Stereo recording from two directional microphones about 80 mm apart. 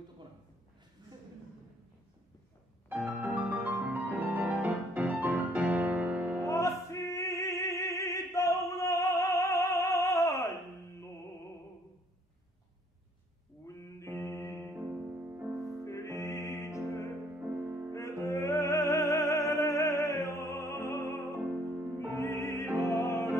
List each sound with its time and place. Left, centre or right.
2.9 s music: centre
6.4 s music: left
13.7 s music: left
14.1 s music: right
14.7 s music: centre
15.1 s music: right
15.8 s music: left
17.4 s music: right
18.2 s music: left